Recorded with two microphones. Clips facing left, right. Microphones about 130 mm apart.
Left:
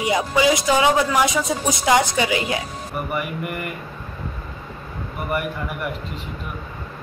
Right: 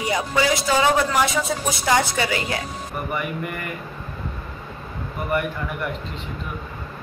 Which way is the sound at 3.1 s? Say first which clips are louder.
Even; 5° left (ahead or behind).